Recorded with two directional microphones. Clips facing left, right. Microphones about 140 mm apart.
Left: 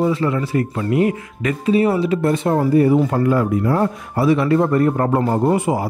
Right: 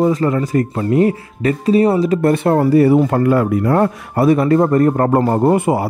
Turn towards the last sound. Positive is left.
turn(degrees=-45)  # may be behind; listen again after turning